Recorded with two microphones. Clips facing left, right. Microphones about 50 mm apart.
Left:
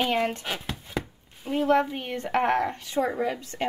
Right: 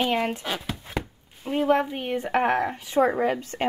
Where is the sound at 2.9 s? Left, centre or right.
Right.